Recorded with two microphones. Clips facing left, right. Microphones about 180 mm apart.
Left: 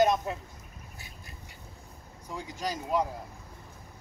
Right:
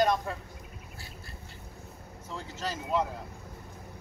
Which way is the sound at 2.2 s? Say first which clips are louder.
Left 2 dB; 15° left (ahead or behind).